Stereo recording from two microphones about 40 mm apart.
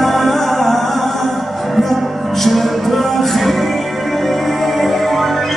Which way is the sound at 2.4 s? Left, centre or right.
Centre.